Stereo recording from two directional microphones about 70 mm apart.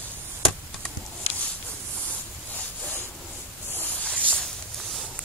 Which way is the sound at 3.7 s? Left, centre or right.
Left.